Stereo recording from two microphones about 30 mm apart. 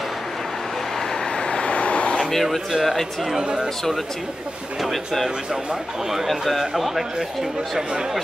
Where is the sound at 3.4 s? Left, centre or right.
Right.